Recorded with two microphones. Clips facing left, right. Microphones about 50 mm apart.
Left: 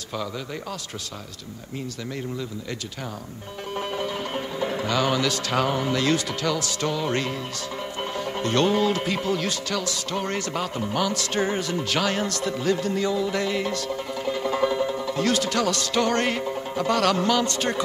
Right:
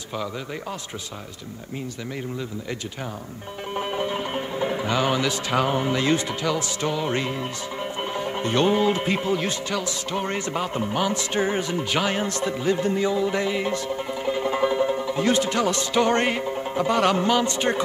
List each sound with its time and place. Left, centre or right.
3.7 s speech: centre
12.5 s music: centre
16.4 s speech: centre